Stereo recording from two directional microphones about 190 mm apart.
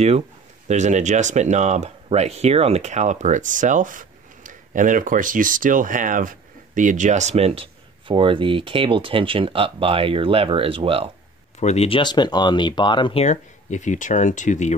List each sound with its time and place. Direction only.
0.7 s speech: 40° right (ahead or behind)
11.6 s speech: 35° left (ahead or behind)